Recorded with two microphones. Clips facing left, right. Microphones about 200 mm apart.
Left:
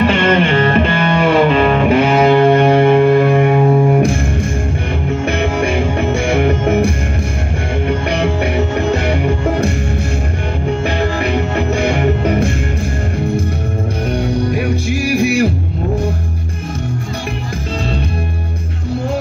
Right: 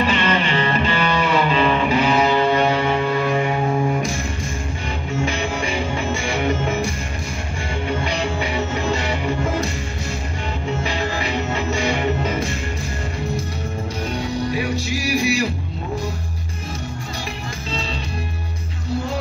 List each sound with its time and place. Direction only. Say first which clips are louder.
0.0 s music: left 7 dB; 50° left (ahead or behind)
5.2 s music: left 6 dB; 60° left (ahead or behind)
8.1 s music: left 7 dB; 55° left (ahead or behind)
11.0 s music: left 7 dB; 55° left (ahead or behind)
14.1 s music: left 6 dB; 55° left (ahead or behind)